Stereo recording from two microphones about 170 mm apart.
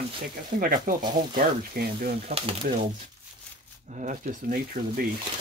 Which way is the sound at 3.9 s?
45° right (ahead or behind).